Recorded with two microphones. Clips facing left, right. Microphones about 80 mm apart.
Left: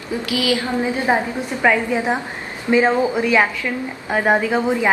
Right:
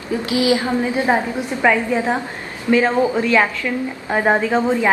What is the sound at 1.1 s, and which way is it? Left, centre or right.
A woman's voice, centre.